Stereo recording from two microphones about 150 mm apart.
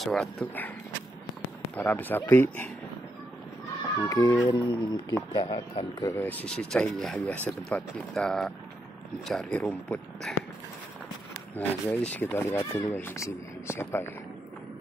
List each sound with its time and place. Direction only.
0.0 s speech: centre (ahead or behind)
1.8 s speech: 10° left (ahead or behind)
4.1 s speech: 20° left (ahead or behind)
6.2 s speech: 10° left (ahead or behind)
11.5 s speech: 10° left (ahead or behind)